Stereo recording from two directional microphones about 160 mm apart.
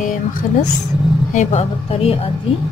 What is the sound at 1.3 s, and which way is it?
Speech, 40° left (ahead or behind).